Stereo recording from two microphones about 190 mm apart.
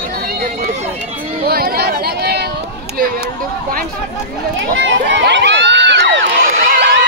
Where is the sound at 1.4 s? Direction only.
55° right (ahead or behind).